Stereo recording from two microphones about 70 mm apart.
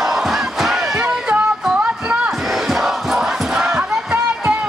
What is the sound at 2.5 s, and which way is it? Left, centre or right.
Battle cry, centre.